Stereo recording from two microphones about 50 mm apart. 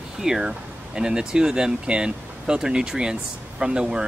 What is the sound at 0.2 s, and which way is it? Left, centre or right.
Speech, centre.